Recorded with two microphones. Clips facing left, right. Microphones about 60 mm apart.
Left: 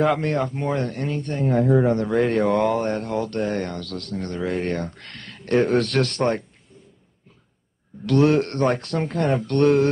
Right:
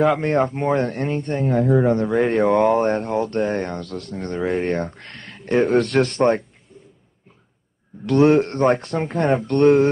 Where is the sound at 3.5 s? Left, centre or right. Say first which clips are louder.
Right 2 dB; right.